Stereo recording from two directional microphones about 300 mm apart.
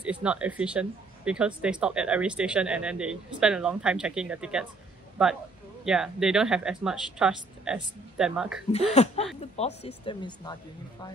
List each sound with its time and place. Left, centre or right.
0.0 s speech: centre
8.7 s speech: left